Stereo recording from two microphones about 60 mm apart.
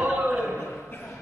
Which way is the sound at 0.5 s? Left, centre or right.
Left.